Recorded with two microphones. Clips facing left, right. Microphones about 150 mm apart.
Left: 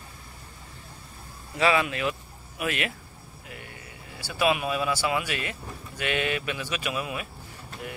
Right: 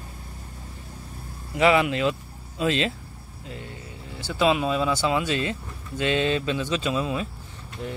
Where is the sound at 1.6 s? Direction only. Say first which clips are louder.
Right 4 dB; 20° right (ahead or behind).